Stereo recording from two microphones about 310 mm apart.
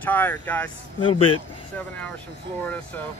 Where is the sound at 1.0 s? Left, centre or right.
Centre.